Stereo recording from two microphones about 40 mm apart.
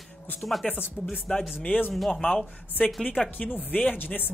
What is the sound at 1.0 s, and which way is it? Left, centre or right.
Speech, left.